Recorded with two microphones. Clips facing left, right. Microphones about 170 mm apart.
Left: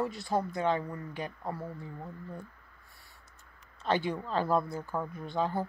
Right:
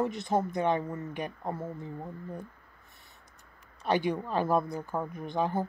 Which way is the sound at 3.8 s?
15° right (ahead or behind).